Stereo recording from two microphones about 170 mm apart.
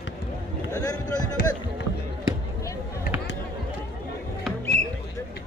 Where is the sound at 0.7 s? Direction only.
20° left (ahead or behind).